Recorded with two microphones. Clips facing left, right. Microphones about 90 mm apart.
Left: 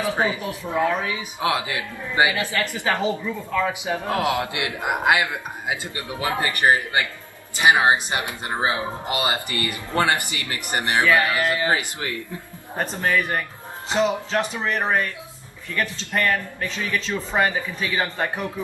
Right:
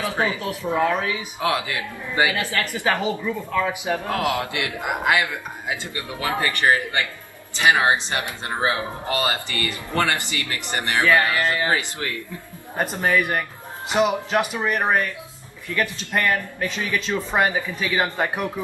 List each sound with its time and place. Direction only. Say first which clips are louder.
0.0 s a man's voice: left 1 dB; 20° left (ahead or behind)
2.8 s speech: right 1 dB; 20° right (ahead or behind)
3.3 s speech: right 1 dB; 5° right (ahead or behind)
3.8 s a man's voice: even; 20° left (ahead or behind)
12.7 s speech: right 2 dB; 15° right (ahead or behind)